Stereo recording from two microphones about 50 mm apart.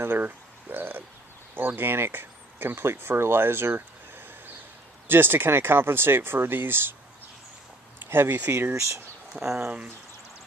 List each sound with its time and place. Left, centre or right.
0.0 s frog: right
1.5 s speech: right
5.0 s speech: right
8.1 s speech: right
9.4 s speech: right